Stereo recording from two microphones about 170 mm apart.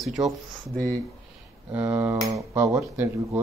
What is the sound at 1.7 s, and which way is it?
Speech, 20° right (ahead or behind).